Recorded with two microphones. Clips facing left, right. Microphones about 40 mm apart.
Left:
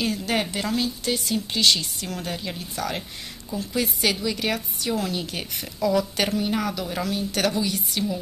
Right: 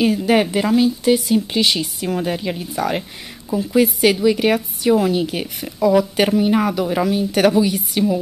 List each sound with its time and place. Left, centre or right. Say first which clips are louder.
0.0 s a woman's voice: right 9 dB; centre